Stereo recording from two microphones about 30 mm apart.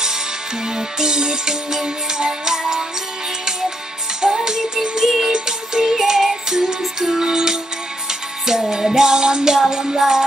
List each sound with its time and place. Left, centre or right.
0.7 s music: right
4.5 s music: centre